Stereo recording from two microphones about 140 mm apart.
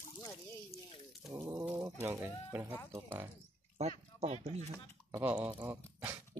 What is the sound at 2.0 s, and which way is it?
Speech, 20° right (ahead or behind).